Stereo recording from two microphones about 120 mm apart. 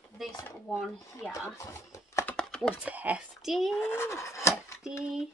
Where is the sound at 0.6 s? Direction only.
Centre (ahead or behind).